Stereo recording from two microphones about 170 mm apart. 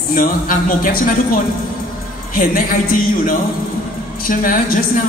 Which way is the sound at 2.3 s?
55° left (ahead or behind).